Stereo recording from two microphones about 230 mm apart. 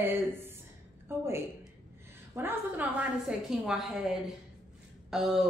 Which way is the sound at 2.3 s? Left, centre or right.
Centre.